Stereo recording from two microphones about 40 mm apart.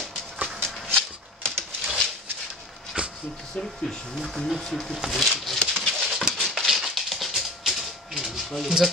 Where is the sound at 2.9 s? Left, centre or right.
Right.